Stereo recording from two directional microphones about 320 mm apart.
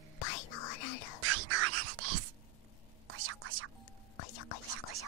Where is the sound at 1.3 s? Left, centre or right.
Right.